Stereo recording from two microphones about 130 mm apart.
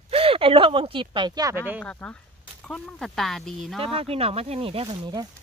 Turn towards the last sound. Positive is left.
turn(degrees=-35)  # may be behind; listen again after turning